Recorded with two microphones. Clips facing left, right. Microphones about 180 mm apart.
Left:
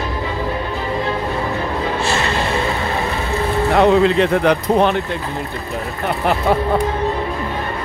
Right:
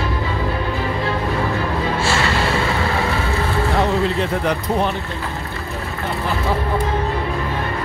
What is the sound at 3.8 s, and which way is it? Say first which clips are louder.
Speech: left 9 dB; 80° left.